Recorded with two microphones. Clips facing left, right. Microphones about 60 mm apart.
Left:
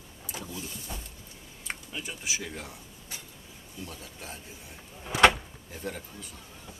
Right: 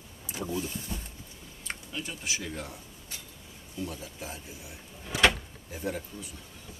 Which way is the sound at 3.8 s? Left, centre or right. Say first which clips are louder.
Right 5 dB; centre.